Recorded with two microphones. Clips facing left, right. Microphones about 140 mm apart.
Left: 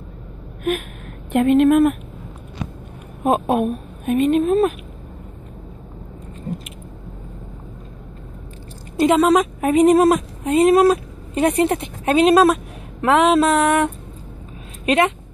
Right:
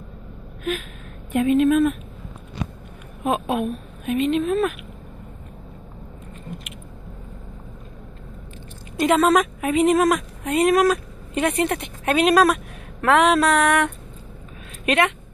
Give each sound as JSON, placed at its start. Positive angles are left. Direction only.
{"t": 0.7, "sound": "a woman's voice", "side_deg": 55}
{"t": 3.3, "sound": "a woman's voice", "side_deg": 40}
{"t": 8.9, "sound": "a woman's voice", "side_deg": 30}
{"t": 9.2, "sound": "a sound", "side_deg": 20}
{"t": 9.6, "sound": "speech", "side_deg": 40}
{"t": 13.0, "sound": "a sound", "side_deg": 25}
{"t": 14.9, "sound": "speech", "side_deg": 30}